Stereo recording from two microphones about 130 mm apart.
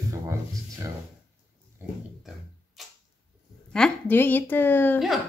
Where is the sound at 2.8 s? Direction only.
Centre (ahead or behind).